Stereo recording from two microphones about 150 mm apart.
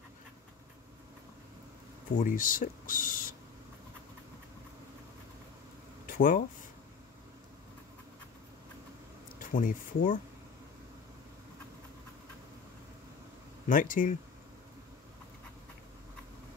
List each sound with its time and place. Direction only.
2.1 s speech: 65° left (ahead or behind)
6.0 s speech: 65° left (ahead or behind)
9.4 s speech: 65° left (ahead or behind)
13.7 s speech: 65° left (ahead or behind)